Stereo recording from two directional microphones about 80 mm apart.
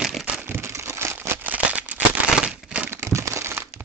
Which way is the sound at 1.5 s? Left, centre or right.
Centre.